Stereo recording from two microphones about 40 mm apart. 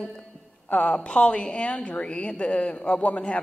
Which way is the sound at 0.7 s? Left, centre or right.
Left.